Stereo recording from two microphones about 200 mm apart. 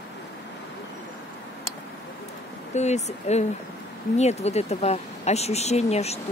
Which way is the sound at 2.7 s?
35° left (ahead or behind).